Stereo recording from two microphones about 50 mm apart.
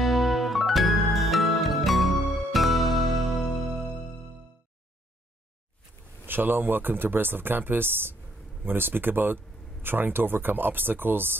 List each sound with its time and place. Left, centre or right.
0.0 s music: centre
6.2 s speech: right